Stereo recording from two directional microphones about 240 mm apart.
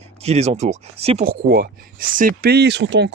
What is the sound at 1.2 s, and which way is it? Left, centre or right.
Speech, right.